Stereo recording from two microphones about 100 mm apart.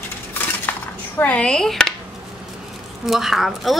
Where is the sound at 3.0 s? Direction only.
Centre (ahead or behind).